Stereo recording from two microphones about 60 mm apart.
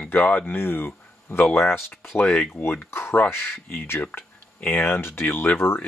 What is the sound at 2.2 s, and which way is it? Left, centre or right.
Speech, left.